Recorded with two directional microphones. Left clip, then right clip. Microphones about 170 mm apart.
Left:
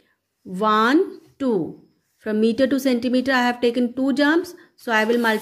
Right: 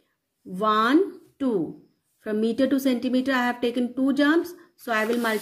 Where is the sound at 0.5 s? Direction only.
30° left (ahead or behind).